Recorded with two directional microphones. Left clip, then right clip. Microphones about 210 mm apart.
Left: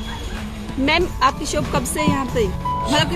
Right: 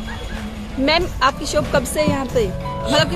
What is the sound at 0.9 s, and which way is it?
Speech, 10° right (ahead or behind).